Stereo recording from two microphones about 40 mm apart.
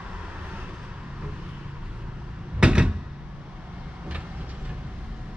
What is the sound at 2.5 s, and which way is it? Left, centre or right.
Door, right.